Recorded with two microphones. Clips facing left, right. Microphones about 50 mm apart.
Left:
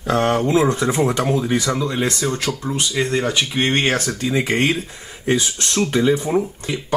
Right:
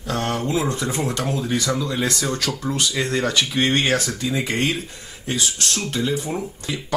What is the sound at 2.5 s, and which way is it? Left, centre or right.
Speech, centre.